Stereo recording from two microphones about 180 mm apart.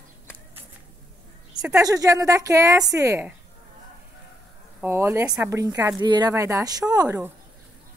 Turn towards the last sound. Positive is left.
turn(degrees=-20)  # may be behind; listen again after turning